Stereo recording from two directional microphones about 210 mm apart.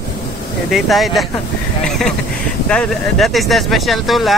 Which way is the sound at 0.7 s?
Centre (ahead or behind).